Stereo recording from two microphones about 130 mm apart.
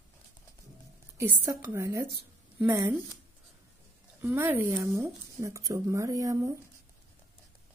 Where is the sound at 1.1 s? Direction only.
20° right (ahead or behind).